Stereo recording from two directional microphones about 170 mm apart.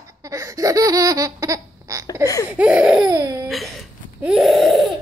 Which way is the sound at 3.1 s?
20° right (ahead or behind).